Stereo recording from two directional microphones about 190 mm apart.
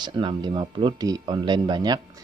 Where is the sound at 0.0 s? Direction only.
25° right (ahead or behind).